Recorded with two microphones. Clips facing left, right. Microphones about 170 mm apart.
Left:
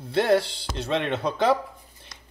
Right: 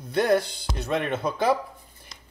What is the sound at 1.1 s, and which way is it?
Speech, 70° left (ahead or behind).